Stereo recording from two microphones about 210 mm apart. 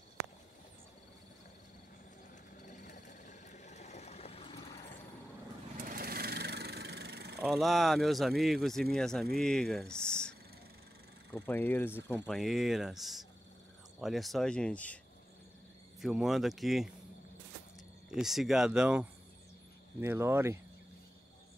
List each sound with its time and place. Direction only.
2.6 s a sound: 35° left (ahead or behind)
5.8 s vehicle: 45° right (ahead or behind)
7.3 s speech: centre (ahead or behind)
11.3 s speech: 10° left (ahead or behind)
16.0 s speech: centre (ahead or behind)
18.1 s speech: centre (ahead or behind)